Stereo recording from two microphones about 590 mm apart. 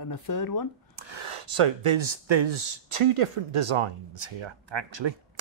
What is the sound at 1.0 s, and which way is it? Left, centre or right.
Speech, right.